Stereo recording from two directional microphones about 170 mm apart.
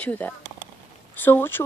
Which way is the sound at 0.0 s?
10° left (ahead or behind).